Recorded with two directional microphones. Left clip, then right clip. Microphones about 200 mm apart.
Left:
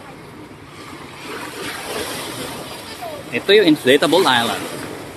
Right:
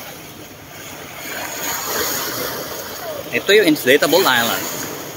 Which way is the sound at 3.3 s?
10° left (ahead or behind).